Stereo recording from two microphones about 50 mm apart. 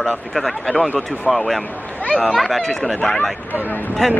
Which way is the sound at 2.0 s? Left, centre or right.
Left.